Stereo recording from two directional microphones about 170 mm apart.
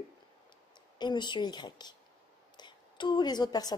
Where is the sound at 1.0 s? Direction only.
25° left (ahead or behind).